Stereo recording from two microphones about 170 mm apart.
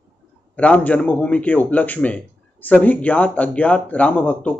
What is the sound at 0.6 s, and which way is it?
A man's voice, 10° left (ahead or behind).